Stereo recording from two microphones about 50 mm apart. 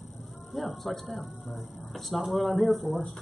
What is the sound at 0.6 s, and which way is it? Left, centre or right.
Speech, centre.